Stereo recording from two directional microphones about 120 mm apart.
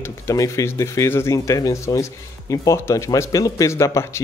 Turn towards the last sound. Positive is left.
turn(degrees=25)  # may be behind; listen again after turning